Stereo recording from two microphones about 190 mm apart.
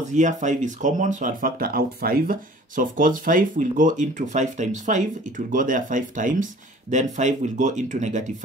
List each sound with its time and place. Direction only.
0.1 s speech: 40° right (ahead or behind)